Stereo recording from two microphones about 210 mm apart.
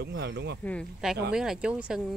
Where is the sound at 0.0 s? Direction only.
55° right (ahead or behind).